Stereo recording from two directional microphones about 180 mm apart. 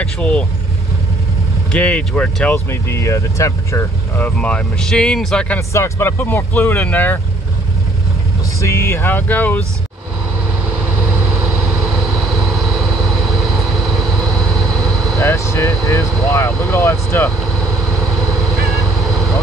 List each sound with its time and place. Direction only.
0.0 s vehicle: 5° left (ahead or behind)
1.7 s speech: 5° left (ahead or behind)
4.4 s speech: 5° left (ahead or behind)
5.7 s speech: 15° left (ahead or behind)
8.5 s speech: 15° left (ahead or behind)
15.1 s speech: 15° left (ahead or behind)